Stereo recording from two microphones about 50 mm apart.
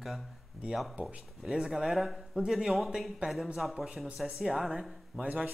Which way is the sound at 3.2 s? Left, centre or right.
Right.